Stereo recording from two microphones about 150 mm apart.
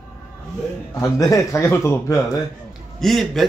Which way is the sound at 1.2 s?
20° left (ahead or behind).